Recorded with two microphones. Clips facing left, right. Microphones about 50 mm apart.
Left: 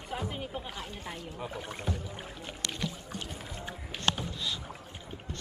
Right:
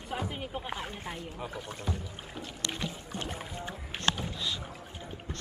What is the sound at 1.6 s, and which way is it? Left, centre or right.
Speech, left.